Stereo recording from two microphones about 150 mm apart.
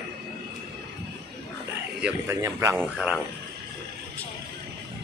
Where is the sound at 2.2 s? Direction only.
20° right (ahead or behind).